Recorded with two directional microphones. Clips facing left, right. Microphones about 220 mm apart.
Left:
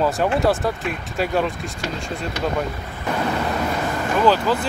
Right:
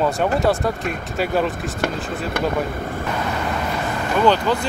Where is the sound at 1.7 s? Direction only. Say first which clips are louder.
Right 4 dB; 55° right (ahead or behind).